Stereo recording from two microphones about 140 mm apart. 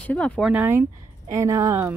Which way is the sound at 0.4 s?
10° right (ahead or behind).